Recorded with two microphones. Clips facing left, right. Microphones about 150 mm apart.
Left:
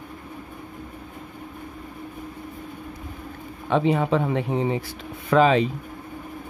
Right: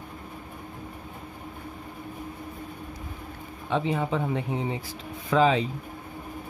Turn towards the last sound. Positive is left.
turn(degrees=65)  # may be behind; listen again after turning